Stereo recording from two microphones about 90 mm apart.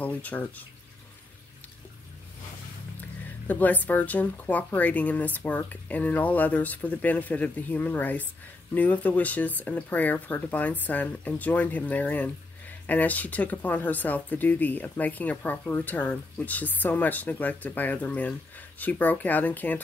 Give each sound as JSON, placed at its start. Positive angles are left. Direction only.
{"t": 0.0, "sound": "speech", "side_deg": 15}
{"t": 3.4, "sound": "speech", "side_deg": 20}